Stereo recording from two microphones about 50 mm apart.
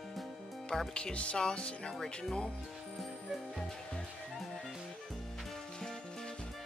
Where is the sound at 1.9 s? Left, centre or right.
Centre.